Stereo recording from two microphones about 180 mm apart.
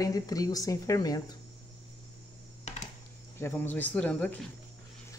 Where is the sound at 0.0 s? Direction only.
20° left (ahead or behind).